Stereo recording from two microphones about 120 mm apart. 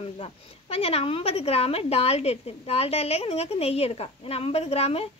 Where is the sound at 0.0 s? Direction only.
55° left (ahead or behind).